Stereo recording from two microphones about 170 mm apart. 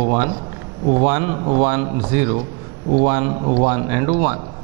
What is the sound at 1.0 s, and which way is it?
Speech, 15° right (ahead or behind).